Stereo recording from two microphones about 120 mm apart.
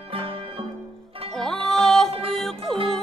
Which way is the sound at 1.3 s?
5° left (ahead or behind).